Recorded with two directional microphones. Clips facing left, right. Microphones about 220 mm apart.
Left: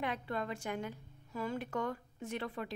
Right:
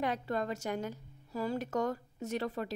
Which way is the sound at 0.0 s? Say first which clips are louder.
Right 4 dB; 40° right (ahead or behind).